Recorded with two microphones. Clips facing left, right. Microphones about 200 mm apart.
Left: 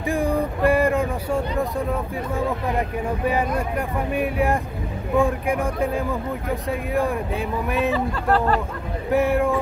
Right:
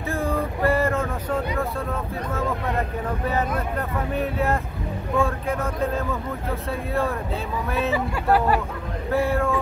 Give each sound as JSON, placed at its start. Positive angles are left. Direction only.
{"t": 0.1, "sound": "vehicle", "side_deg": 15}
{"t": 3.1, "sound": "speech", "side_deg": 10}
{"t": 7.9, "sound": "speech", "side_deg": -10}
{"t": 9.1, "sound": "speech", "side_deg": 15}